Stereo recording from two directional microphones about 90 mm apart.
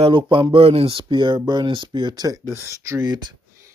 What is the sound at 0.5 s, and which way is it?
Speech, 90° right.